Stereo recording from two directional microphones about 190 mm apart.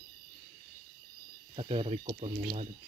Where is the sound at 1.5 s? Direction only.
30° right (ahead or behind).